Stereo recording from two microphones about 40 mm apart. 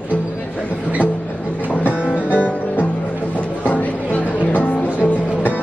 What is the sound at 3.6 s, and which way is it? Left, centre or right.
Music, left.